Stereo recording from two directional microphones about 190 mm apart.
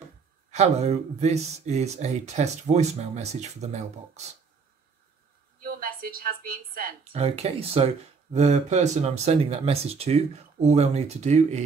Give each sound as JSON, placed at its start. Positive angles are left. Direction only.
{"t": 0.5, "sound": "speech", "side_deg": -35}
{"t": 5.6, "sound": "a woman's voice", "side_deg": -50}
{"t": 7.1, "sound": "speech", "side_deg": -35}